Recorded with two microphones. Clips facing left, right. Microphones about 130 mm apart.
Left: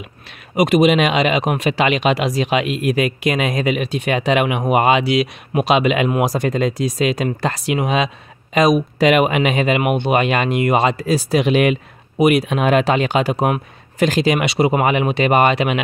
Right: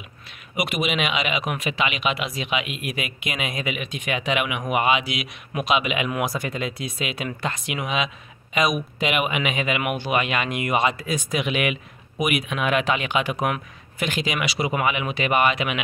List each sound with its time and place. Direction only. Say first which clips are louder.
0.6 s speech: left 11 dB; 40° left (ahead or behind)